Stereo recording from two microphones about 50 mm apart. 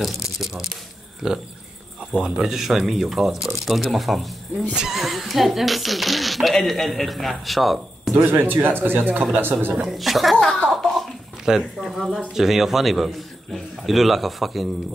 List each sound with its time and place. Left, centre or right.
0.0 s speech: centre
8.3 s speech: right
9.8 s speech: centre
11.5 s speech: centre
11.8 s speech: centre